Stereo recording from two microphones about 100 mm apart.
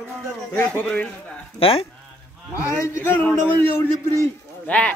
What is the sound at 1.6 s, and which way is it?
Speech, 75° left (ahead or behind).